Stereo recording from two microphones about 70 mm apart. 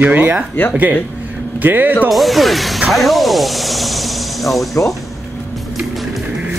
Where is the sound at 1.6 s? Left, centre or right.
Right.